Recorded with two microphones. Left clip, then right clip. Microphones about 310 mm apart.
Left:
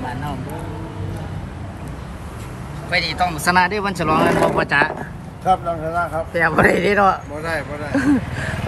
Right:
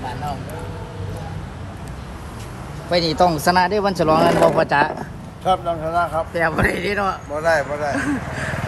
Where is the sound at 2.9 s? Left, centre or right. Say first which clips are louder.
Right 3 dB; centre.